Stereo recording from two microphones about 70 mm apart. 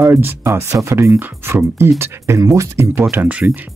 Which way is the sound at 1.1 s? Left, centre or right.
Right.